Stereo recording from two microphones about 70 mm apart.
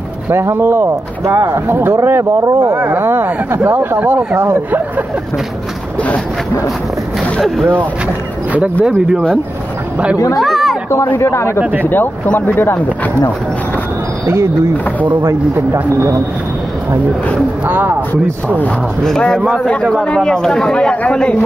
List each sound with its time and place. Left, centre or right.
0.3 s speech: right
2.8 s speech: right
7.3 s speech: centre
10.1 s speech: left
10.4 s a sound: centre
11.1 s speech: left
11.8 s speech: left
14.2 s speech: right
15.7 s speech: right
17.6 s speech: right
19.0 s speech: centre